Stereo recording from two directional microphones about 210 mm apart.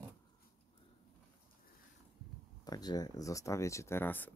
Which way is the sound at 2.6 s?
20° left (ahead or behind).